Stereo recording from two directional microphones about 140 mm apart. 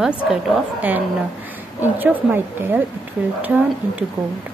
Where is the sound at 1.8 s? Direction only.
10° right (ahead or behind).